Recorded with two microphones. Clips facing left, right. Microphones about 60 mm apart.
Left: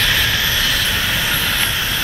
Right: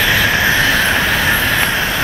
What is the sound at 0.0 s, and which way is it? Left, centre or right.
Vehicle, right.